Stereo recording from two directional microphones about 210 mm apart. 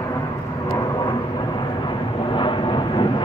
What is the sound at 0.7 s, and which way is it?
Vehicle, 20° left (ahead or behind).